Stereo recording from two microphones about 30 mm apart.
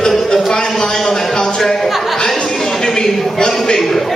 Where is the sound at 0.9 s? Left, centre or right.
Centre.